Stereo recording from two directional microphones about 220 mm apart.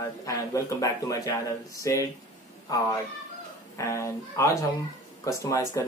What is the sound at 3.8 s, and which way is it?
Speech, 15° left (ahead or behind).